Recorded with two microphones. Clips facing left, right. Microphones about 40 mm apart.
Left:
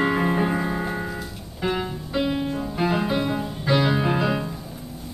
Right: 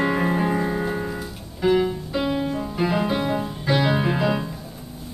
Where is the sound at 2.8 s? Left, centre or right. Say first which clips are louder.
Even; centre.